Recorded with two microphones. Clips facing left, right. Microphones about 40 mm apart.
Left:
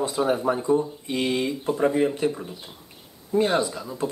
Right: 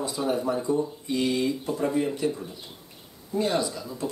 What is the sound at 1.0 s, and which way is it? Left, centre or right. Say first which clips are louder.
Speech: even; left.